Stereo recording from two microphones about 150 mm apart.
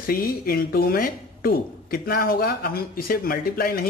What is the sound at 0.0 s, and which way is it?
A man's voice, 80° left.